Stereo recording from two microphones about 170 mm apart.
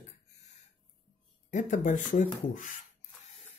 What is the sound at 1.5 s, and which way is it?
Speech, 50° left (ahead or behind).